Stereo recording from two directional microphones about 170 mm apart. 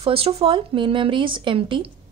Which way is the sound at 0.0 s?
35° right (ahead or behind).